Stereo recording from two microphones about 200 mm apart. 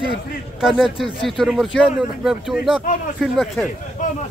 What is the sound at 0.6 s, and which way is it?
A man's voice, centre (ahead or behind).